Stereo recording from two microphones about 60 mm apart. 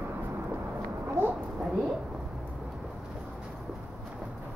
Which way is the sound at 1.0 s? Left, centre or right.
Right.